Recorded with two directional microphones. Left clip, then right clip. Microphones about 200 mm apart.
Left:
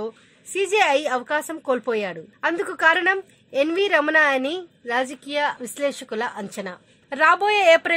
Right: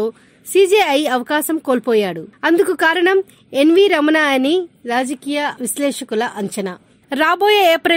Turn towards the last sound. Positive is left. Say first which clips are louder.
# right 4 dB
turn(degrees=-40)  # may be behind; listen again after turning